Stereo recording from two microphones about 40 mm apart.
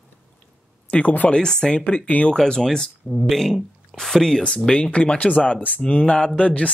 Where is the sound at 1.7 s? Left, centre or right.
Left.